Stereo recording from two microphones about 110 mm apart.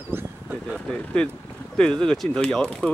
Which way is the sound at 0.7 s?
5° left (ahead or behind).